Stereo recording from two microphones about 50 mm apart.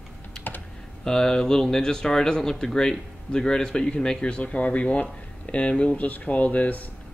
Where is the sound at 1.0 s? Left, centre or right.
Centre.